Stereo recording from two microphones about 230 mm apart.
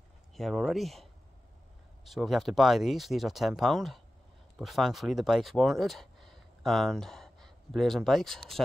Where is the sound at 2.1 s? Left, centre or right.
Centre.